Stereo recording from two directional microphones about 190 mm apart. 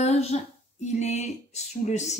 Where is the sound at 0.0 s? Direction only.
35° left (ahead or behind).